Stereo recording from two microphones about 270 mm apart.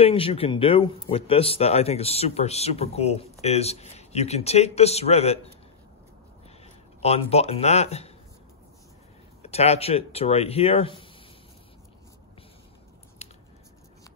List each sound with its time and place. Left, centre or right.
0.0 s speech: left
6.6 s speech: left
9.4 s speech: left
13.2 s a sound: left